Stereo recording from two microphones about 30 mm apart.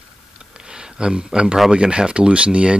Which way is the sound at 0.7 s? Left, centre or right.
Right.